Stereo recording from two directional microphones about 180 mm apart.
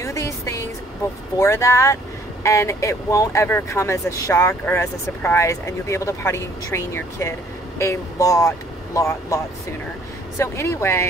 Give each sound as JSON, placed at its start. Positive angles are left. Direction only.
{"t": 0.0, "sound": "music", "side_deg": 15}
{"t": 1.4, "sound": "speech", "side_deg": 15}